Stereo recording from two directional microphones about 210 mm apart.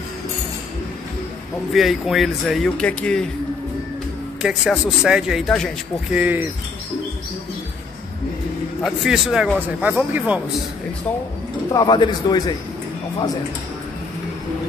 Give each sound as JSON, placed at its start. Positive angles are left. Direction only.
{"t": 1.7, "sound": "a man's voice", "side_deg": 0}
{"t": 4.4, "sound": "a man's voice", "side_deg": -5}
{"t": 8.8, "sound": "a man's voice", "side_deg": 0}
{"t": 11.7, "sound": "a man's voice", "side_deg": 20}